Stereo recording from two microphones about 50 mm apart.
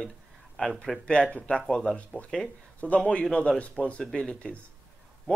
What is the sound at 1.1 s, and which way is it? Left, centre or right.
Speech, centre.